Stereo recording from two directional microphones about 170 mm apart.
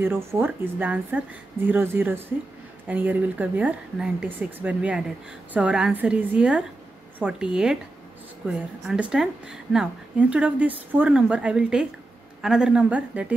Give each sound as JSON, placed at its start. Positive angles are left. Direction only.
{"t": 0.0, "sound": "a woman's voice", "side_deg": -15}
{"t": 8.5, "sound": "speech", "side_deg": -5}